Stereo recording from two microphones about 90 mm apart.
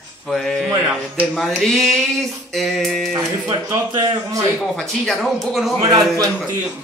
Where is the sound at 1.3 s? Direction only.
Centre (ahead or behind).